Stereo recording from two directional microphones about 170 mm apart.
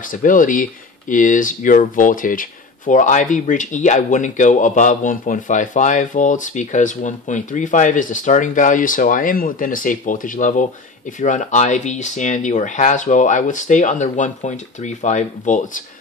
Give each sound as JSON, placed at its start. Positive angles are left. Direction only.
{"t": 0.0, "sound": "speech", "side_deg": 50}